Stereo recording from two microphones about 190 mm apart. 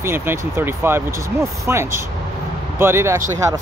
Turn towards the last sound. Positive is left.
turn(degrees=-15)  # may be behind; listen again after turning